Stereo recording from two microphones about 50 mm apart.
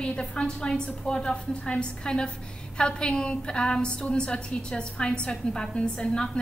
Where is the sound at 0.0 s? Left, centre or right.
Centre.